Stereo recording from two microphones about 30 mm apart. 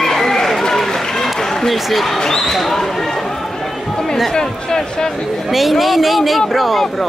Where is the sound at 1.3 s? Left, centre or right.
Centre.